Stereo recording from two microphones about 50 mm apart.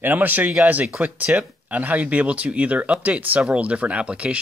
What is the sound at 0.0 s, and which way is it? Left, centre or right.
Speech, right.